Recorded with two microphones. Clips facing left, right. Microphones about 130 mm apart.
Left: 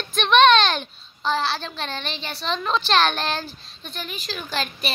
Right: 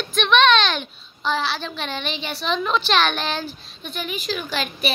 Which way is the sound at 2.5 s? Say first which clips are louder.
Right 1 dB; 35° left (ahead or behind).